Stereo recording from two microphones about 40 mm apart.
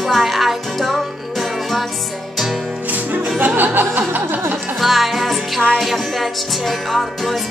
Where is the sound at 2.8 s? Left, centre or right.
Right.